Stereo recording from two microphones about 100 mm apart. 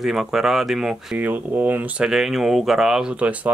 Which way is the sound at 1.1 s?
15° right (ahead or behind).